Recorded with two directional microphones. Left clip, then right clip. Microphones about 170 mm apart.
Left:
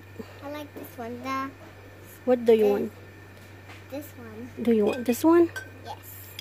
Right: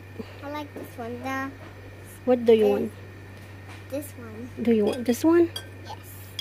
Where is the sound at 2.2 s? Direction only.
15° left (ahead or behind).